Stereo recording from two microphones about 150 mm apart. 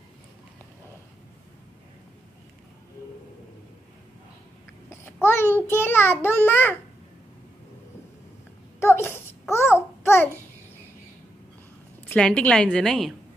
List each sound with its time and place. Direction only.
4.8 s a child's voice: 15° left (ahead or behind)
8.7 s babbling: 15° left (ahead or behind)
12.1 s a woman's voice: 5° left (ahead or behind)